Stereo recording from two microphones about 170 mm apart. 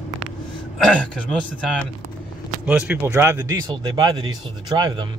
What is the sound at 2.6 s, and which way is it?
Speech, 10° right (ahead or behind).